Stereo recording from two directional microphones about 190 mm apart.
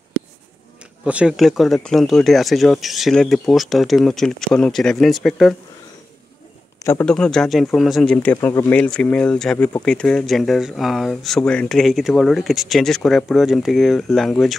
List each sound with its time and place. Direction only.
1.0 s speech: 5° right (ahead or behind)
6.8 s speech: 10° left (ahead or behind)